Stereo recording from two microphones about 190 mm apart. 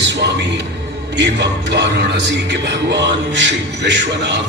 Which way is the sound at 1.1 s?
65° right (ahead or behind).